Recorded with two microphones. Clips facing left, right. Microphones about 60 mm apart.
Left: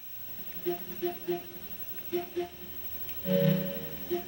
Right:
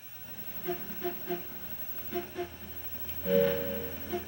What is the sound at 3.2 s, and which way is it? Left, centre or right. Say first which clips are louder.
Music: right 1 dB; centre.